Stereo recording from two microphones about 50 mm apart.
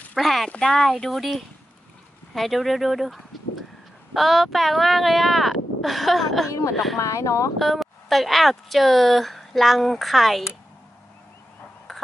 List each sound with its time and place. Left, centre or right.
0.2 s a woman's voice: centre
7.0 s speech: left
7.5 s a woman's voice: centre
11.9 s a sound: centre